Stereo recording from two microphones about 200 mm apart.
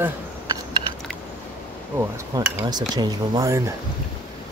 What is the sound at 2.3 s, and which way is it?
Speech, 20° right (ahead or behind).